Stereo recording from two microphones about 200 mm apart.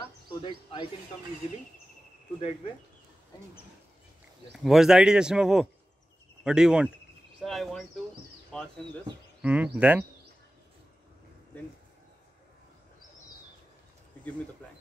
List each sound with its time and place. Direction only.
0.3 s speech: 25° left (ahead or behind)
4.6 s a man's voice: centre (ahead or behind)
9.4 s speech: 5° right (ahead or behind)